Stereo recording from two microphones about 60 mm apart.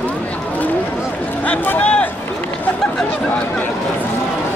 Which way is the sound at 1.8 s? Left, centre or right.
Centre.